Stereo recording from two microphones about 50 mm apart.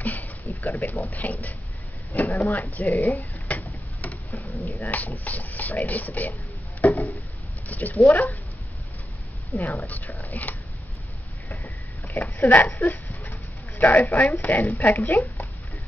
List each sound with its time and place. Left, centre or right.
0.0 s a sound: left
0.6 s speech: left
2.7 s a sound: left
4.5 s speech: left
6.8 s chop: left
7.6 s speech: left
9.6 s speech: left
12.1 s a sound: left
13.7 s speech: left